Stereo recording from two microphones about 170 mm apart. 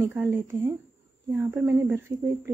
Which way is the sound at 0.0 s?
10° right (ahead or behind).